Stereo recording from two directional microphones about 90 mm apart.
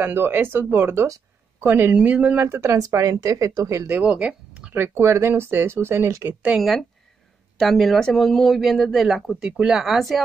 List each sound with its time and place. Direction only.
0.0 s speech: 25° right (ahead or behind)
2.4 s speech: 30° right (ahead or behind)
4.0 s speech: 15° right (ahead or behind)
4.7 s speech: 25° right (ahead or behind)
6.5 s speech: 10° right (ahead or behind)
7.5 s speech: 5° left (ahead or behind)